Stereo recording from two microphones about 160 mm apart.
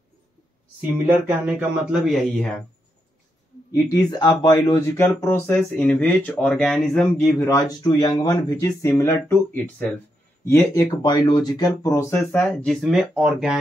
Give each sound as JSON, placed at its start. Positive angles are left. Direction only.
{"t": 0.7, "sound": "speech", "side_deg": -10}
{"t": 3.7, "sound": "speech", "side_deg": 25}
{"t": 7.3, "sound": "speech", "side_deg": 20}
{"t": 12.1, "sound": "speech", "side_deg": 5}